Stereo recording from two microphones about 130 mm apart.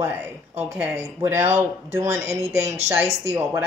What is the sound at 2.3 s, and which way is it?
Speech, 55° right (ahead or behind).